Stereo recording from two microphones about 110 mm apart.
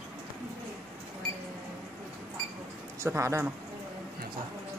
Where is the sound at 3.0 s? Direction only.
25° right (ahead or behind).